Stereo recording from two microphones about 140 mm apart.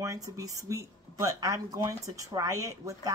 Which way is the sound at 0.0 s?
25° right (ahead or behind).